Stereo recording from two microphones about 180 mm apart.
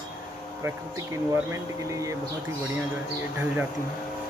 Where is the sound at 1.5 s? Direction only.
15° right (ahead or behind).